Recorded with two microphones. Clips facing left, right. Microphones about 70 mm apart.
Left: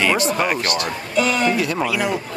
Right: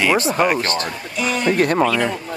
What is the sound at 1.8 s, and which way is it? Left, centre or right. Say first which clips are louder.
Speech: right 3 dB; centre.